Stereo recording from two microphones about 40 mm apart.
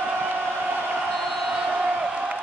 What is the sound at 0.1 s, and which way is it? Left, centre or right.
Chant, right.